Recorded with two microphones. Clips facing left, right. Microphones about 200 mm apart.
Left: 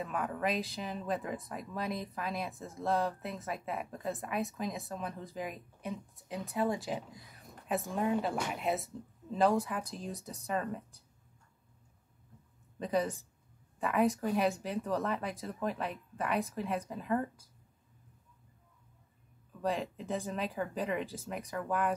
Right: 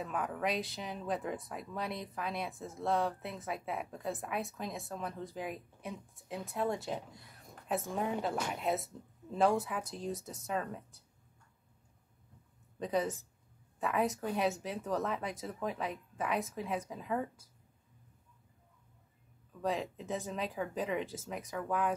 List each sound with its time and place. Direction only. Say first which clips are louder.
0.0 s speech: left 1 dB; centre (ahead or behind)
12.7 s speech: left 1 dB; centre (ahead or behind)
19.6 s speech: left 1 dB; centre (ahead or behind)